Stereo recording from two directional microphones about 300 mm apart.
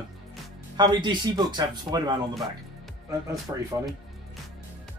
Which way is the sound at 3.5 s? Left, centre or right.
Centre.